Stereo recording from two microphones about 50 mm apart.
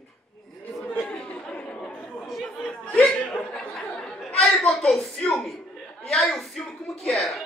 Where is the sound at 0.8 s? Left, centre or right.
Centre.